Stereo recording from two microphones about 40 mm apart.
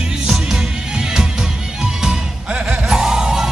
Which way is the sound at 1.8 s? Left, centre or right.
Centre.